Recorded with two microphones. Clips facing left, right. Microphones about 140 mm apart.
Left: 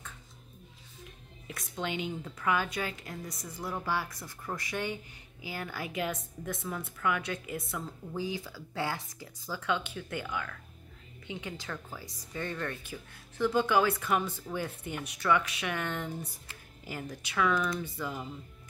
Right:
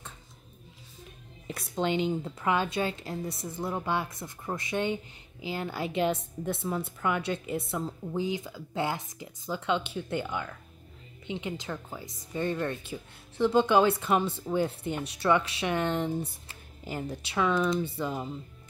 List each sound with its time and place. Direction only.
1.5 s speech: 30° right (ahead or behind)